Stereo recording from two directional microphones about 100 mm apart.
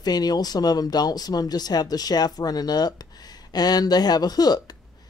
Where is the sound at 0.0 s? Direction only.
40° left (ahead or behind).